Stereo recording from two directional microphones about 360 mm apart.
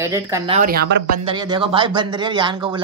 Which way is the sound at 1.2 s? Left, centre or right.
Centre.